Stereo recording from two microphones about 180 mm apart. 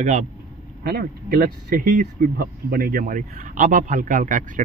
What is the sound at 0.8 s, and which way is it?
Speech, 60° right (ahead or behind).